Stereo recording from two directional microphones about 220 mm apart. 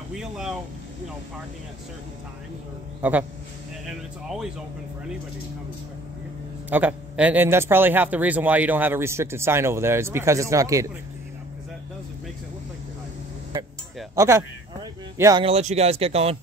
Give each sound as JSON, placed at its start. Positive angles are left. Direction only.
{"t": 0.1, "sound": "speech", "side_deg": 0}
{"t": 3.0, "sound": "speech", "side_deg": -5}
{"t": 6.7, "sound": "speech", "side_deg": -5}
{"t": 14.1, "sound": "a sound", "side_deg": -15}
{"t": 15.4, "sound": "speech", "side_deg": -30}